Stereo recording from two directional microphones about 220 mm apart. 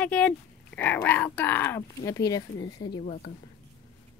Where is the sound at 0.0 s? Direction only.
5° left (ahead or behind); by 3.4 s 25° left (ahead or behind).